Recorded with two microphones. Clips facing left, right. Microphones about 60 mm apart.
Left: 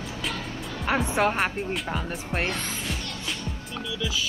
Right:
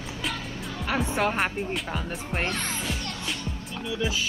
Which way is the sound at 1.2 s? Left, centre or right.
Centre.